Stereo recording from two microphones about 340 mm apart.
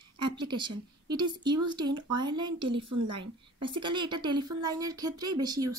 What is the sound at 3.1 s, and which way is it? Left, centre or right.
A woman's voice, centre.